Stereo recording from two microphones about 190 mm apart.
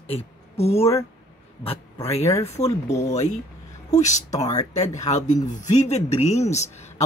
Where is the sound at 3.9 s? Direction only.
40° left (ahead or behind).